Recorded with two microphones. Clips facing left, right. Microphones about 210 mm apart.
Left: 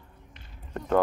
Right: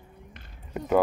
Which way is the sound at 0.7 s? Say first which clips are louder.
Right 1 dB; 5° right (ahead or behind).